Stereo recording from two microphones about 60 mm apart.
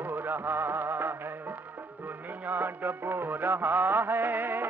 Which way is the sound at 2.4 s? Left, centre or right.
Right.